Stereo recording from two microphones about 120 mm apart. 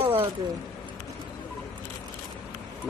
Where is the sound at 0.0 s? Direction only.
50° right (ahead or behind).